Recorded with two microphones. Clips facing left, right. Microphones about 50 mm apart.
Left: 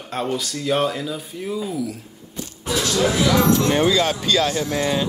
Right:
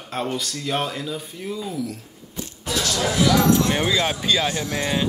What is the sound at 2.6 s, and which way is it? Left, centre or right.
Music, left.